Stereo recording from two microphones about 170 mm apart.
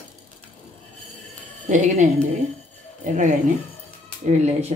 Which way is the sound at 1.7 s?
45° right (ahead or behind).